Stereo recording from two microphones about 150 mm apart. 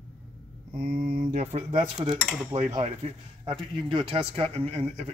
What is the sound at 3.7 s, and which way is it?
Speech, 35° right (ahead or behind).